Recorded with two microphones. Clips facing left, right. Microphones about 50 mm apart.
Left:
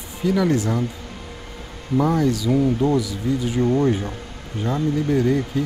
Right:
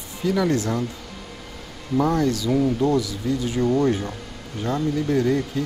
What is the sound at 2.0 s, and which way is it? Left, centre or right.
Speech, centre.